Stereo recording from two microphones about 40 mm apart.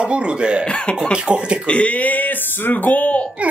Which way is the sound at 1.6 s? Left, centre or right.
Left.